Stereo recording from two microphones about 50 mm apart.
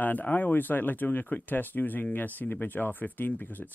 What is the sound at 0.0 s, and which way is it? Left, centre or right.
Speech, left.